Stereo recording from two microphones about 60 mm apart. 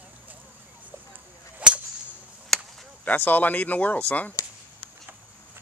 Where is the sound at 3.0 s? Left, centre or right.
Left.